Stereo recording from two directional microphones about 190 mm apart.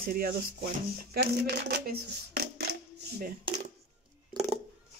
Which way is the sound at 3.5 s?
25° right (ahead or behind).